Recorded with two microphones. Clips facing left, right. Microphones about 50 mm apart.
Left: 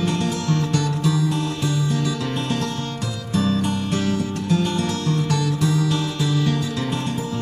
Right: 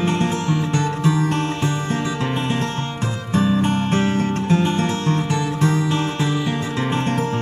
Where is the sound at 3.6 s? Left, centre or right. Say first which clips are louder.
Right 4 dB; right.